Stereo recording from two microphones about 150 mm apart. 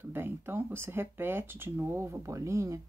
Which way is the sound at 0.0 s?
15° right (ahead or behind).